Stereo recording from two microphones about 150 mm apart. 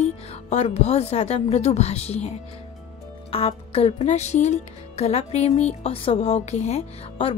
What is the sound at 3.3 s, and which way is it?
Speech, 40° left (ahead or behind).